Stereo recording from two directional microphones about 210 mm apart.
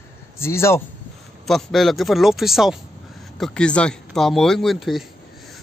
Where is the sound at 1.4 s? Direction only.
Centre (ahead or behind).